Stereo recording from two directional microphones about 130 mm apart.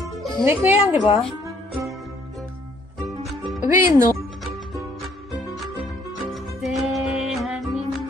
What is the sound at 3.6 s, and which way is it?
Speech, 25° right (ahead or behind).